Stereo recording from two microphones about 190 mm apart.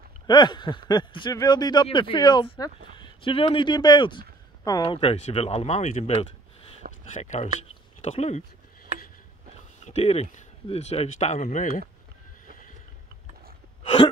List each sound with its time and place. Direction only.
0.3 s speech: 25° left (ahead or behind)
6.8 s speech: 45° right (ahead or behind)
7.2 s speech: 40° left (ahead or behind)
9.8 s speech: 35° left (ahead or behind)
12.4 s vehicle: 45° left (ahead or behind)